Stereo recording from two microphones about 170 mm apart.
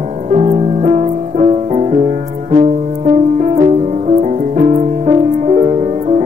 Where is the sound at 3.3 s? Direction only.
40° right (ahead or behind).